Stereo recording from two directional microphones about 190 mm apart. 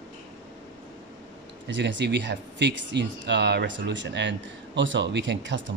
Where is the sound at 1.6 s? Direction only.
70° right (ahead or behind).